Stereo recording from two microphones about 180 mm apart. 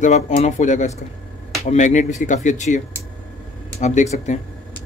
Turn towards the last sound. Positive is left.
turn(degrees=40)  # may be behind; listen again after turning